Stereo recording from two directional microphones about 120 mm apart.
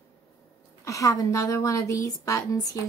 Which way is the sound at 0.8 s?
25° left (ahead or behind).